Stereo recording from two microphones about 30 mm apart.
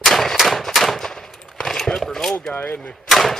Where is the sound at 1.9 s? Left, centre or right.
Centre.